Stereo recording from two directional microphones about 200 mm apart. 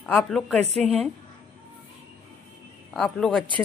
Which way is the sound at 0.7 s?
30° right (ahead or behind).